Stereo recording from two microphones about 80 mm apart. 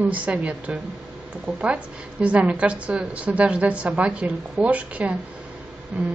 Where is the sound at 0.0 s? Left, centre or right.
Centre.